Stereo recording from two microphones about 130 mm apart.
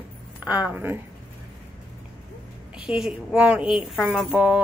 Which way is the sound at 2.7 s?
5° right (ahead or behind).